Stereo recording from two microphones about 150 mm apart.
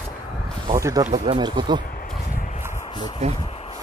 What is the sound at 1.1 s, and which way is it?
Speech, 40° right (ahead or behind).